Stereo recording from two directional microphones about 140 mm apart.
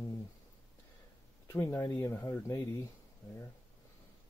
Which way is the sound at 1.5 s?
20° left (ahead or behind).